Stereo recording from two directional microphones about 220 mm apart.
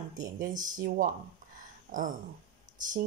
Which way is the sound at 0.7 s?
40° right (ahead or behind).